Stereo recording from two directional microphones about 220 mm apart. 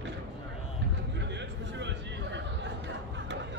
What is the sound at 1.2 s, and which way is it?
Chatter, 55° right (ahead or behind).